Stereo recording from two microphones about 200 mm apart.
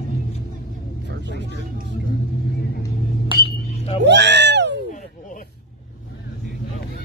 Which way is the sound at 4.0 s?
60° right (ahead or behind).